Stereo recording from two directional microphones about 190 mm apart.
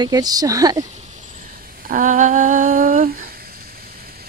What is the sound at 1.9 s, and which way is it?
Humming, 45° right (ahead or behind).